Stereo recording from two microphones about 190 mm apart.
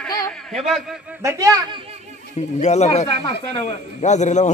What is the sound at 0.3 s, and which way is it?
Speech, centre (ahead or behind).